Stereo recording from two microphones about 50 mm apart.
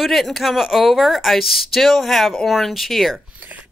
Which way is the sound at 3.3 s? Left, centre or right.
Right.